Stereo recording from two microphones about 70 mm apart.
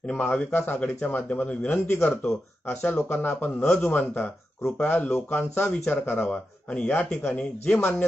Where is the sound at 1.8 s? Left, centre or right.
Left.